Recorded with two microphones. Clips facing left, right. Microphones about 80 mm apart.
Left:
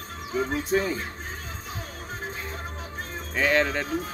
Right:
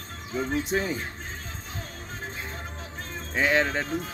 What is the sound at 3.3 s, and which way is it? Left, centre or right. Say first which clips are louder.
Speech: left 1 dB; right.